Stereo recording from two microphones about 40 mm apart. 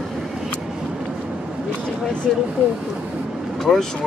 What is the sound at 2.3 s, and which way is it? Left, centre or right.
Speech, centre.